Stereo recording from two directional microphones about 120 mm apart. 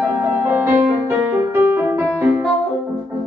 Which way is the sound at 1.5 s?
20° right (ahead or behind).